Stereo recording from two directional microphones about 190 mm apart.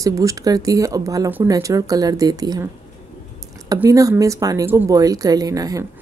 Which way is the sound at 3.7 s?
15° right (ahead or behind).